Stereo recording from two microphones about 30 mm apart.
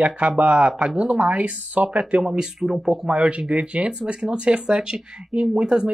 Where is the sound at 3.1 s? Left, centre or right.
Right.